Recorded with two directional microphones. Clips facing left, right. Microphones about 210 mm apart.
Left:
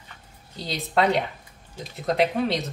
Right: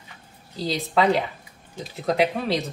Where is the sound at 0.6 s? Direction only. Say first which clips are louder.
Right 2 dB; centre (ahead or behind).